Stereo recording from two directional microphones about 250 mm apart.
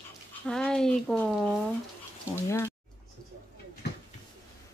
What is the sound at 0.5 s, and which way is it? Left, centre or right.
Speech, centre.